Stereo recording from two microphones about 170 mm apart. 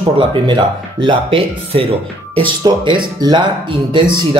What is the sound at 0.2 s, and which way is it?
Speech, 30° right (ahead or behind).